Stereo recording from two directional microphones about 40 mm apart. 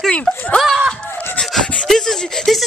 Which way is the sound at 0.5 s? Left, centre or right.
Left.